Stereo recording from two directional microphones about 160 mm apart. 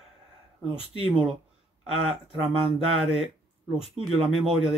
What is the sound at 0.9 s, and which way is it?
Speech, 30° right (ahead or behind).